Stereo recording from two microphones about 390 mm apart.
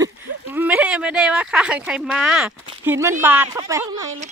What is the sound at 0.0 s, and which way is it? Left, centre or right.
Speech, centre.